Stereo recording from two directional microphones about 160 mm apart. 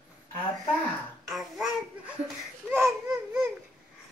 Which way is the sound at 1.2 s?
Centre (ahead or behind).